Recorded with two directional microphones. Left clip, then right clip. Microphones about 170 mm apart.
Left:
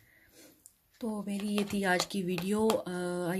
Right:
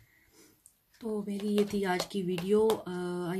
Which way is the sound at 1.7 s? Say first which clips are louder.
Left 2 dB; 35° left (ahead or behind).